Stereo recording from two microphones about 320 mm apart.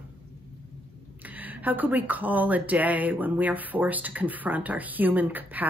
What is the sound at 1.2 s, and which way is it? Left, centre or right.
Speech, centre.